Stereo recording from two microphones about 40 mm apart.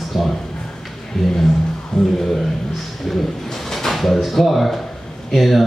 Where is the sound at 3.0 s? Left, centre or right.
Centre.